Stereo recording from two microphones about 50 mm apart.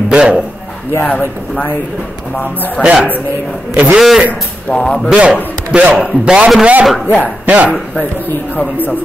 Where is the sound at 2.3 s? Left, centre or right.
Left.